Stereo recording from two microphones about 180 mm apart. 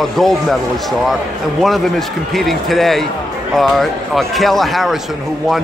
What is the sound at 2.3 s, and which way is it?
Speech, centre (ahead or behind).